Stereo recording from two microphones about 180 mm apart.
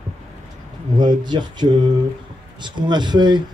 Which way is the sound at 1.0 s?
25° right (ahead or behind).